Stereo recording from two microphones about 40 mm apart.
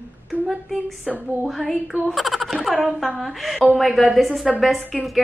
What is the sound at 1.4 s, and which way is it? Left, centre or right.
A woman's voice, centre.